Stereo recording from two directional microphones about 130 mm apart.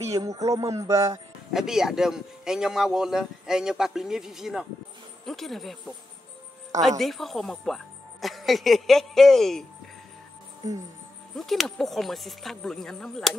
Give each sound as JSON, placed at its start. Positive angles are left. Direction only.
{"t": 0.0, "sound": "a sound", "side_deg": -25}
{"t": 1.5, "sound": "a man's voice", "side_deg": -5}
{"t": 7.0, "sound": "a man's voice", "side_deg": 0}
{"t": 11.3, "sound": "a man's voice", "side_deg": 0}